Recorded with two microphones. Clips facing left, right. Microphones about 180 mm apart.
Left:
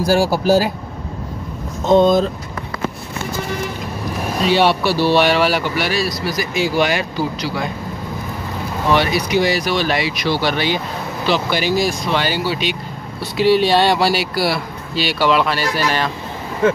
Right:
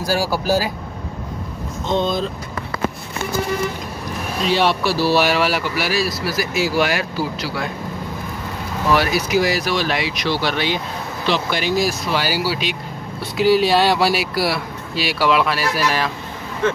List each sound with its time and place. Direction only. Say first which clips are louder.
0.2 s speech: left 5 dB; 45° left (ahead or behind)
1.9 s speech: left 8 dB; 45° left (ahead or behind)
4.5 s speech: left 3 dB; centre (ahead or behind)
8.9 s speech: left 1 dB; 5° right (ahead or behind)